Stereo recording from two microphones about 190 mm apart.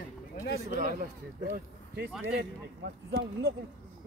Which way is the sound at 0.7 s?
45° right (ahead or behind).